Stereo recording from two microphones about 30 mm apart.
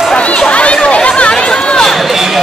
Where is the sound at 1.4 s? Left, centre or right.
Left.